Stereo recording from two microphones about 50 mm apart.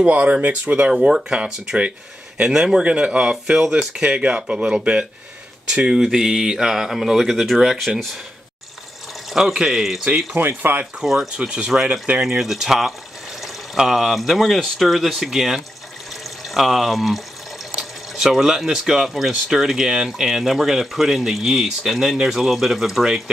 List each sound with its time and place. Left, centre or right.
0.1 s speech: right
0.9 s speech: centre
9.3 s speech: centre
10.3 s speech: right
11.0 s speech: centre
11.3 s speech: centre